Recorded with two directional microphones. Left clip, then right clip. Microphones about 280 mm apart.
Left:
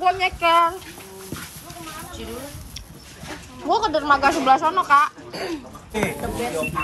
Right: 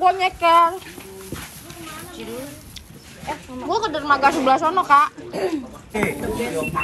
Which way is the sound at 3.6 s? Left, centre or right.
Centre.